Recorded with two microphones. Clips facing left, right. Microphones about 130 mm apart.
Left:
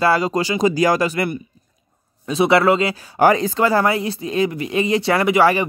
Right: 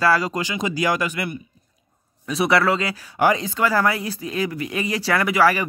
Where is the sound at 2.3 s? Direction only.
25° left (ahead or behind).